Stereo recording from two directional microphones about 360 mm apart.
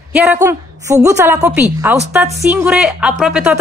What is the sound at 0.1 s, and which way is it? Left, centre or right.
A woman's voice, centre.